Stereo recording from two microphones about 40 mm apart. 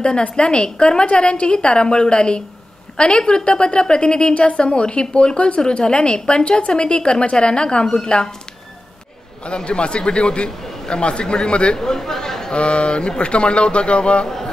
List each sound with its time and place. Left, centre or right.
0.0 s a woman's voice: left
9.7 s a woman's voice: left
11.8 s speech: centre
12.5 s a woman's voice: left